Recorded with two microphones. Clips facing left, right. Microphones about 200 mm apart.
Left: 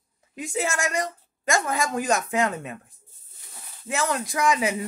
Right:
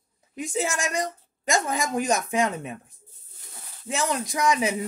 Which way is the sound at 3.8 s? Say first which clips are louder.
Left 1 dB; 20° right (ahead or behind).